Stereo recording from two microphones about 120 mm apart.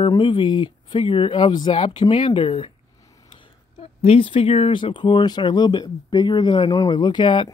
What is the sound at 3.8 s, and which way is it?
Speech, 50° left (ahead or behind).